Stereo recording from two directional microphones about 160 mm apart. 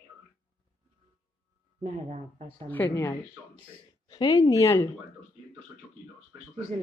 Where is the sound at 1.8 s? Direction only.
50° right (ahead or behind).